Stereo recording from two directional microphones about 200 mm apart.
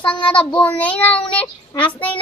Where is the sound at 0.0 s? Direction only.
5° left (ahead or behind).